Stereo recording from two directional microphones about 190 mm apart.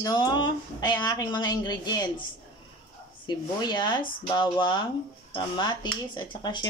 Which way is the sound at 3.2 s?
20° left (ahead or behind).